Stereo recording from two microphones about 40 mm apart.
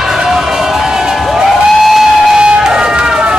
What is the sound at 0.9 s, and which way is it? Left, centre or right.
Crowd, centre.